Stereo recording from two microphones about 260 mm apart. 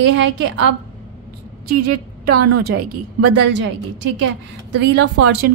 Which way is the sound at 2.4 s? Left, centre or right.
Right.